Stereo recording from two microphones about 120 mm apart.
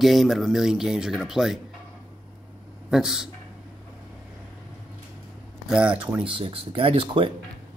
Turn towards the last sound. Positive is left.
turn(degrees=-50)  # may be behind; listen again after turning